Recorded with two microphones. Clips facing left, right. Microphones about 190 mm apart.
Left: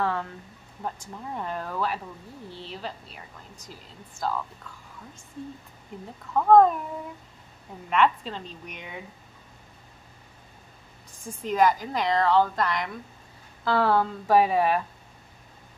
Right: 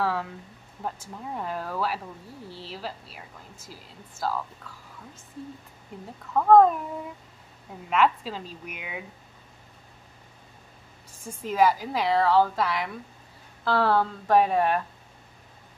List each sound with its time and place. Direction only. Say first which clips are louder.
0.0 s a woman's voice: even; 5° right (ahead or behind)
6.3 s a woman's voice: even; centre (ahead or behind)
7.9 s a woman's voice: even; 5° right (ahead or behind)
11.4 s a woman's voice: even; 5° right (ahead or behind)